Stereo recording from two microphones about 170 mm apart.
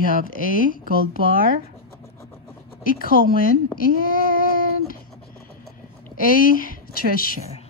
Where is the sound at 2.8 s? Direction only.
55° left (ahead or behind).